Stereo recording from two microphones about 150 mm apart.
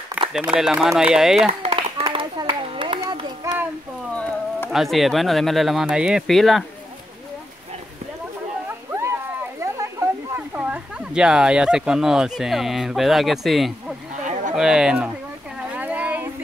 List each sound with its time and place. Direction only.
0.4 s speech: 5° right (ahead or behind)
1.7 s clapping: 35° right (ahead or behind)
3.0 s child singing: 25° right (ahead or behind)
4.1 s speech: 10° left (ahead or behind)
8.6 s a sound: 20° right (ahead or behind); by 13.9 s centre (ahead or behind)
14.5 s speech: 5° right (ahead or behind)
15.7 s a sound: 10° right (ahead or behind)